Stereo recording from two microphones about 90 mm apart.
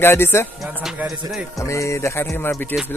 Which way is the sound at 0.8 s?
5° right (ahead or behind).